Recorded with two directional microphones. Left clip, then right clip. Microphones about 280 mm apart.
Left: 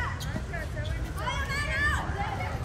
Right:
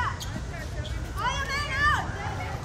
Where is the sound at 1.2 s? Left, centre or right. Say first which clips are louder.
Right 4 dB; centre.